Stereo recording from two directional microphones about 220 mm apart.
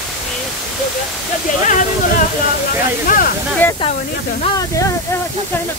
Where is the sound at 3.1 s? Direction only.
40° left (ahead or behind).